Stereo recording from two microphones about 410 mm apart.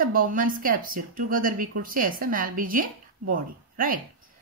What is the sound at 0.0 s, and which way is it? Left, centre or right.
A woman's voice, centre.